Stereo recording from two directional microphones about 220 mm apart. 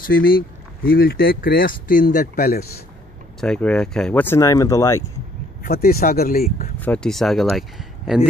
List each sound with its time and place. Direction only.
0.0 s speech: 40° left (ahead or behind)
3.3 s speech: 5° left (ahead or behind)
5.6 s speech: 45° left (ahead or behind)
6.8 s speech: 5° left (ahead or behind)